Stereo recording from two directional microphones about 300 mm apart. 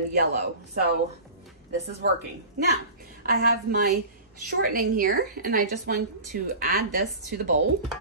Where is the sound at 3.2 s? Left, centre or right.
Right.